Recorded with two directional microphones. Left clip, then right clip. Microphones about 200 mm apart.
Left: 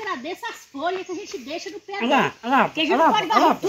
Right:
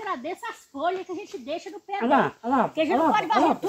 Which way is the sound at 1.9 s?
30° left (ahead or behind).